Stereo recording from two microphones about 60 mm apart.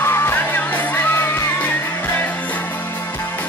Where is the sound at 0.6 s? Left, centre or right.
Left.